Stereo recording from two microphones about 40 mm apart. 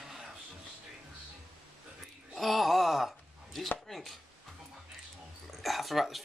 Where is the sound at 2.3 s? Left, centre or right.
Centre.